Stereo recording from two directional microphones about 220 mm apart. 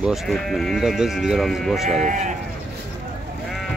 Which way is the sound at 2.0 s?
35° right (ahead or behind).